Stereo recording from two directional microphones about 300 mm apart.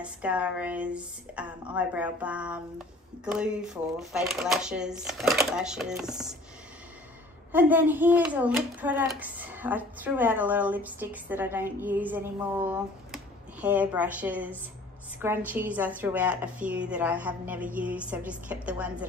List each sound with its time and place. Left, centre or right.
0.0 s a child's voice: centre
7.5 s a child's voice: centre